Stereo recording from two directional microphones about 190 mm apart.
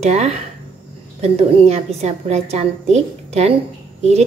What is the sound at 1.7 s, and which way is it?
A woman's voice, 35° right (ahead or behind).